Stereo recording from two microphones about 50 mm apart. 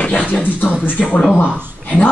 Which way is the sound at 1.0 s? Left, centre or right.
Centre.